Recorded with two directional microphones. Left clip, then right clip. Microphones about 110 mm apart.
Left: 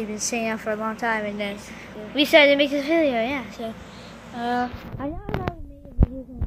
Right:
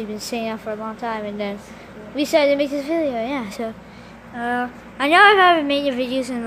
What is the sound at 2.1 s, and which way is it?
A woman's voice, 15° right (ahead or behind).